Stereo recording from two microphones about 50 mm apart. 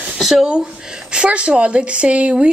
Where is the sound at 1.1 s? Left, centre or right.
Right.